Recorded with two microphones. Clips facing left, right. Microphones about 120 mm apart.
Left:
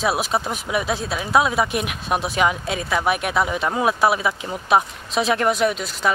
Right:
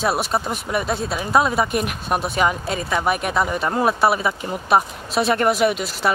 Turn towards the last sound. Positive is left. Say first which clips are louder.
# right 2 dB
turn(degrees=-5)  # may be behind; listen again after turning